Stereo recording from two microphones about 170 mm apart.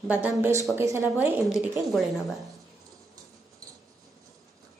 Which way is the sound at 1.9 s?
Centre (ahead or behind).